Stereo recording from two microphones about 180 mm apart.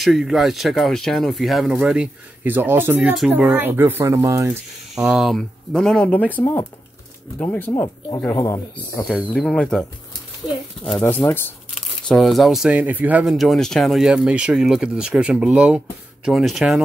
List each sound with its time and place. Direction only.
0.0 s speech: centre (ahead or behind); by 4.6 s 15° right (ahead or behind)
4.9 s speech: 5° right (ahead or behind); by 11.5 s 10° left (ahead or behind)
12.1 s speech: centre (ahead or behind)